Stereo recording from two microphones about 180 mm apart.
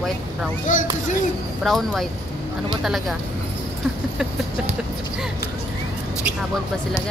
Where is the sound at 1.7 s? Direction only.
Centre (ahead or behind).